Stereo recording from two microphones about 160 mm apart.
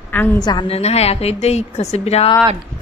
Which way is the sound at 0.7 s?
40° left (ahead or behind).